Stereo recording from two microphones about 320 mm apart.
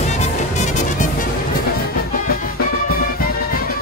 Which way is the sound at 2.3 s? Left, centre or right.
Left.